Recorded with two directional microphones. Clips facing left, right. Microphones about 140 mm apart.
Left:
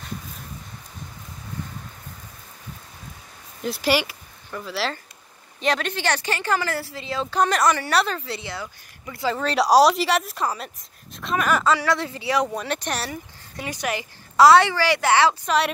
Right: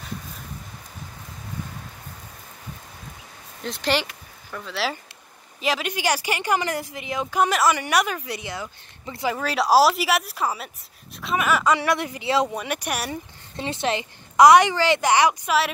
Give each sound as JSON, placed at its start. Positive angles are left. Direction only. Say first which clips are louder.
{"t": 3.6, "sound": "speech", "louder": "left 2 dB", "side_deg": 5}
{"t": 9.3, "sound": "speech", "louder": "left 1 dB", "side_deg": -5}
{"t": 11.7, "sound": "speech", "louder": "even", "side_deg": -20}
{"t": 12.5, "sound": "speech", "louder": "left 1 dB", "side_deg": -10}
{"t": 13.1, "sound": "speech", "louder": "right 2 dB", "side_deg": -25}